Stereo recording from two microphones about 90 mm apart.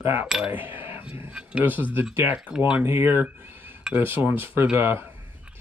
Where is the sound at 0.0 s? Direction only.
20° right (ahead or behind).